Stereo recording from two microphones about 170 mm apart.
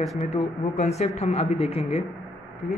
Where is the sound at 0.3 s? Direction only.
40° left (ahead or behind).